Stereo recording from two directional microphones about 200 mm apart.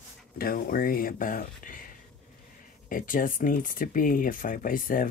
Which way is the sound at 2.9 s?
45° left (ahead or behind).